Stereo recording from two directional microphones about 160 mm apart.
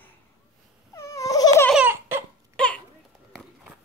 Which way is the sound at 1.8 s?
15° right (ahead or behind).